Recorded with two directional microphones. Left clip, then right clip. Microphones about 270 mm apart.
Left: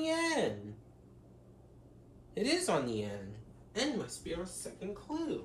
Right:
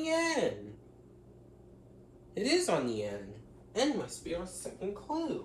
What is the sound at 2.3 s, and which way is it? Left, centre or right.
Speech, centre.